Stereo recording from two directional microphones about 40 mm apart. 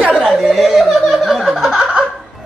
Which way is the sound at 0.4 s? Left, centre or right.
Centre.